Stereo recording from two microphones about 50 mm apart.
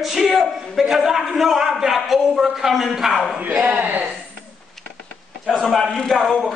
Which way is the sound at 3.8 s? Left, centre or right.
Right.